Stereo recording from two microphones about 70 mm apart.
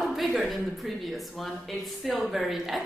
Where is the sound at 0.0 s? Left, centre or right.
Centre.